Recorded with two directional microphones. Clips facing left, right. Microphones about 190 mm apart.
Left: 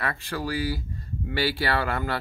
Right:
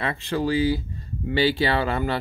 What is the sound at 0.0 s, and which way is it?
Speech, 20° right (ahead or behind).